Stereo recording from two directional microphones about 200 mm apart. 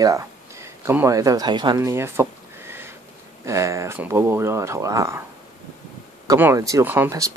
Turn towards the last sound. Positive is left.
turn(degrees=-15)  # may be behind; listen again after turning